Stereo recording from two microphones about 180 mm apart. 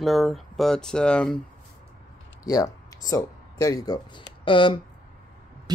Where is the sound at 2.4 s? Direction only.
20° left (ahead or behind).